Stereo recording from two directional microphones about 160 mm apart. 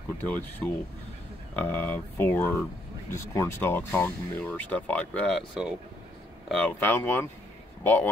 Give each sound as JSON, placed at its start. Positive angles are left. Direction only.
{"t": 0.3, "sound": "speech", "side_deg": 10}